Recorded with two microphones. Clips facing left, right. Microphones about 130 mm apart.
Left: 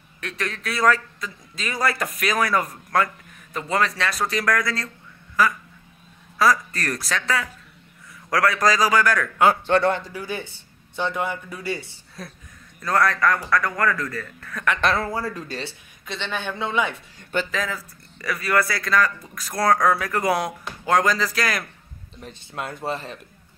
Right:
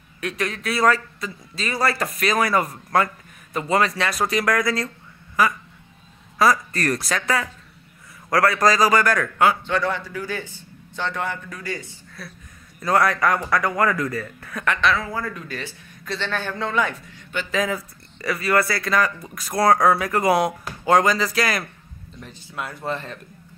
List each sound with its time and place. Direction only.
0.2 s a man's voice: 10° right (ahead or behind)
6.3 s speech: centre (ahead or behind)
9.8 s a man's voice: 55° left (ahead or behind)
10.0 s a man's voice: 20° left (ahead or behind)
12.8 s a man's voice: 10° right (ahead or behind)
14.8 s a man's voice: 45° left (ahead or behind); by 16.6 s 15° left (ahead or behind)
18.2 s speech: 5° right (ahead or behind)
22.6 s a man's voice: 25° left (ahead or behind)